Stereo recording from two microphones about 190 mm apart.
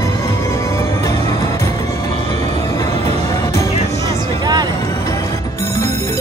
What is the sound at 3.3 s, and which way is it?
Music, 15° left (ahead or behind).